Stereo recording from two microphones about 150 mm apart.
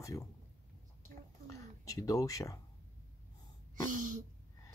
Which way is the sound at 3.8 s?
60° right (ahead or behind).